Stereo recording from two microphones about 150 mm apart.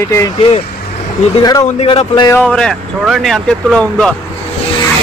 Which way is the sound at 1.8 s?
40° left (ahead or behind).